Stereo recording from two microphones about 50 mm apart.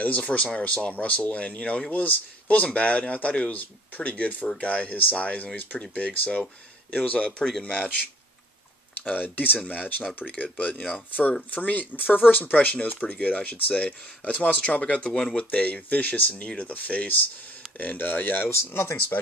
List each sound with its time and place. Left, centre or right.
0.0 s speech: left
9.0 s speech: left